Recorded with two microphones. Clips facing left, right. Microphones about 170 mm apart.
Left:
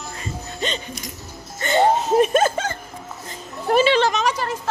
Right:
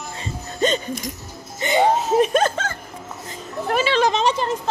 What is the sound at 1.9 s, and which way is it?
Laughter, centre (ahead or behind).